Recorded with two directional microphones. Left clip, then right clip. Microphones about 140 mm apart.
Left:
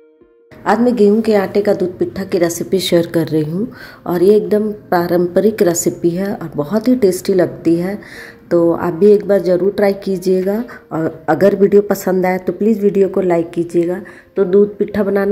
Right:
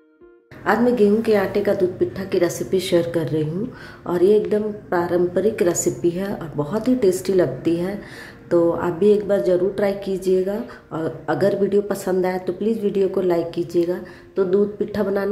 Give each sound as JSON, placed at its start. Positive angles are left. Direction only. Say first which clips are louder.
{"t": 0.7, "sound": "a woman's voice", "louder": "left 5 dB", "side_deg": 40}